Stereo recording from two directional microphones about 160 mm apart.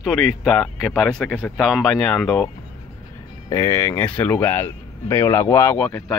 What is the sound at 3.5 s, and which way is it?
Speech, 20° left (ahead or behind).